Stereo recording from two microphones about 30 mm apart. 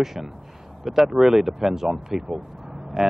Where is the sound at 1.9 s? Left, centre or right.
Centre.